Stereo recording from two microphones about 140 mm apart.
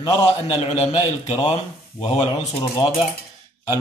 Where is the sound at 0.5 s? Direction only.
35° left (ahead or behind).